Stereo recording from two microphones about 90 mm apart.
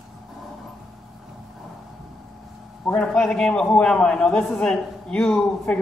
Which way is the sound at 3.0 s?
10° left (ahead or behind).